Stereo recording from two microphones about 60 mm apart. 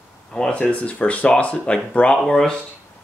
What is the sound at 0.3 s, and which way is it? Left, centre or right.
Speech, centre.